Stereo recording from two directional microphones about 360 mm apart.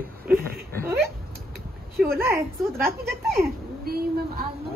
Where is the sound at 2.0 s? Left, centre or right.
Centre.